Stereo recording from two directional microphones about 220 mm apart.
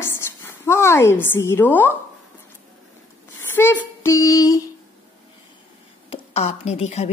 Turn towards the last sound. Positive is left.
turn(degrees=30)  # may be behind; listen again after turning